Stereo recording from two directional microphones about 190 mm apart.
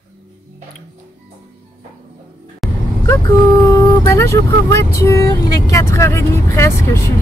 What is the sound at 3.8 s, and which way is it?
Speech, 25° left (ahead or behind).